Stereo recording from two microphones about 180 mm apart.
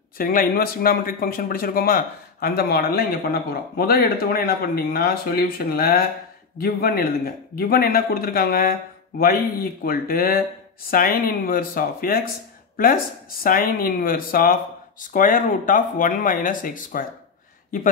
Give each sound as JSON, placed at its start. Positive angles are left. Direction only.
{"t": 0.2, "sound": "speech", "side_deg": 50}
{"t": 13.4, "sound": "speech", "side_deg": 55}